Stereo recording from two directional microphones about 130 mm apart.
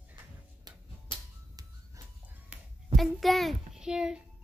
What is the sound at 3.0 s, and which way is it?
A child's voice, centre (ahead or behind).